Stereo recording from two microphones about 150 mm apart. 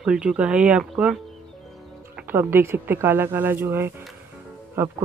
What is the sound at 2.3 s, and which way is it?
Speech, 15° right (ahead or behind).